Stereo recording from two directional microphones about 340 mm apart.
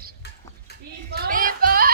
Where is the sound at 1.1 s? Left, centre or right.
Right.